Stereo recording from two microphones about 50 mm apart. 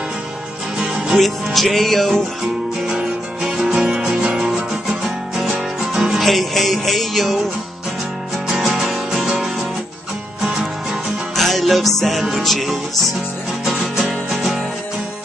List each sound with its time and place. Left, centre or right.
0.7 s music: centre
1.2 s music: centre
3.4 s music: centre
6.2 s music: centre
8.5 s music: centre
11.3 s music: centre